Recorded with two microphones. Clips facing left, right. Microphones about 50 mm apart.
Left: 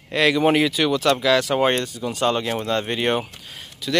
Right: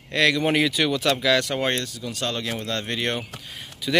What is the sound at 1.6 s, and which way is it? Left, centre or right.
Speech, left.